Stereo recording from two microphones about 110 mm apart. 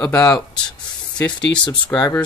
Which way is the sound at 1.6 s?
45° left (ahead or behind).